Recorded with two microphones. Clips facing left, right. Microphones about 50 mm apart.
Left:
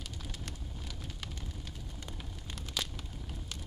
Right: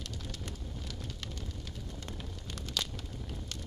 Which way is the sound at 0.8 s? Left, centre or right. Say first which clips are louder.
Even; centre.